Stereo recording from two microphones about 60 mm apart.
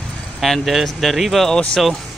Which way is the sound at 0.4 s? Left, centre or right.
Centre.